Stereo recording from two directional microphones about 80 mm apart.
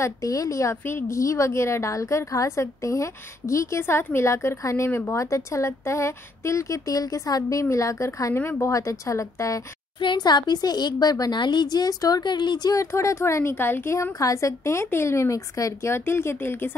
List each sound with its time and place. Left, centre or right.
0.0 s a woman's voice: left
9.9 s speech: left
12.7 s a woman's voice: left
14.2 s a woman's voice: left